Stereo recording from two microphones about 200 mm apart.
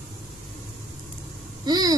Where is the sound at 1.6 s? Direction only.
20° right (ahead or behind).